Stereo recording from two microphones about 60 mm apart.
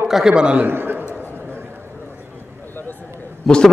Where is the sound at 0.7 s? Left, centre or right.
Right.